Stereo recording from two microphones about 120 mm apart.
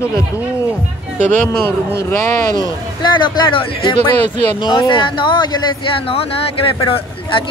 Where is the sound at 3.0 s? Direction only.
40° left (ahead or behind).